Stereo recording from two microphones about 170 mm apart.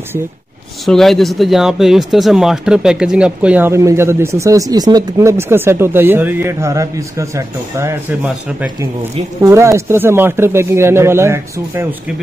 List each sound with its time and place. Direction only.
0.8 s speech: centre (ahead or behind); by 11.9 s 15° right (ahead or behind)